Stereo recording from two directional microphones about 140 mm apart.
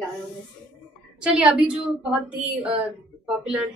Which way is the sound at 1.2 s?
10° right (ahead or behind).